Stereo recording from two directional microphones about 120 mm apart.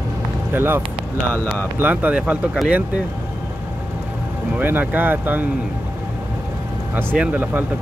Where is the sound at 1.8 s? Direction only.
15° right (ahead or behind).